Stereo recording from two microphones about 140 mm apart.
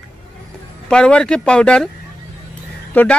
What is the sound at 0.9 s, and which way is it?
Speech, 5° left (ahead or behind).